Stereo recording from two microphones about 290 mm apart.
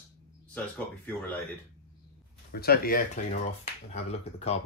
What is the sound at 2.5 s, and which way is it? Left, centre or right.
Speech, left.